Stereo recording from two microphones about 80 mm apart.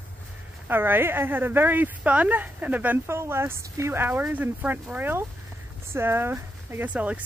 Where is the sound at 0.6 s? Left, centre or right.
Right.